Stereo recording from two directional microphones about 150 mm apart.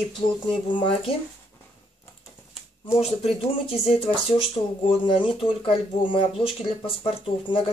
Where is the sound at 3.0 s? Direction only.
45° left (ahead or behind).